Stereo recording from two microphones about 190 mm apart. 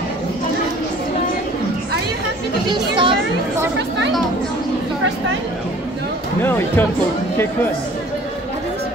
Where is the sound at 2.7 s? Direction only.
25° right (ahead or behind).